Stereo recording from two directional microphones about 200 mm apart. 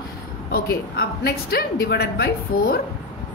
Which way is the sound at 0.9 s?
50° left (ahead or behind).